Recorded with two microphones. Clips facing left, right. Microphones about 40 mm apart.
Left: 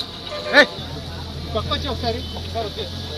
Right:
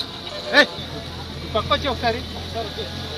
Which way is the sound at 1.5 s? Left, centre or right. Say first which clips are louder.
Right 4 dB; right.